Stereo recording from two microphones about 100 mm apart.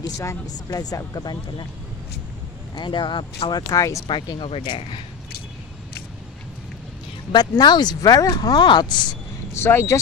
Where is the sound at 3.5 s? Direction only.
35° left (ahead or behind).